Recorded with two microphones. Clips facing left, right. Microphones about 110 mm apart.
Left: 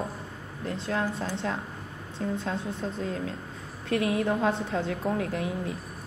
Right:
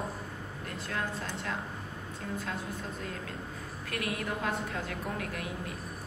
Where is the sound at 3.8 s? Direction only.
25° left (ahead or behind).